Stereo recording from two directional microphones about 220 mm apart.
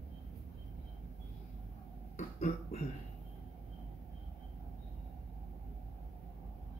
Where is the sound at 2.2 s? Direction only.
30° left (ahead or behind).